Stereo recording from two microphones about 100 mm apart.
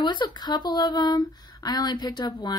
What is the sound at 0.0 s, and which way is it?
Speech, 50° left (ahead or behind).